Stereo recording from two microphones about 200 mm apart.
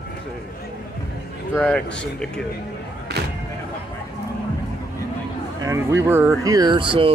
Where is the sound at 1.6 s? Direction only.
5° left (ahead or behind).